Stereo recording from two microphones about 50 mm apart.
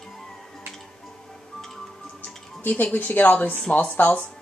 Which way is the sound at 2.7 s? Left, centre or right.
Left.